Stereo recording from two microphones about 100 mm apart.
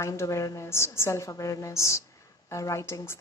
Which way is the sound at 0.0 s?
30° left (ahead or behind).